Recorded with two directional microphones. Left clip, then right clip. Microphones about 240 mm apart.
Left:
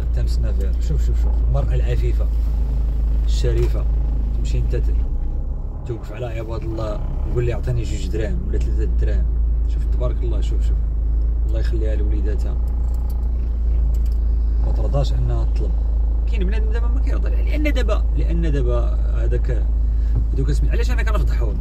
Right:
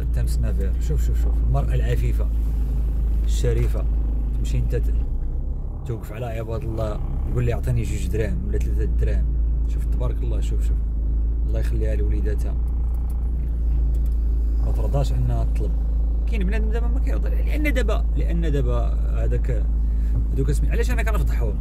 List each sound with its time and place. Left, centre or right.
0.2 s speech: right
3.3 s speech: right
5.9 s speech: right
11.5 s speech: right
15.0 s speech: right
16.3 s speech: right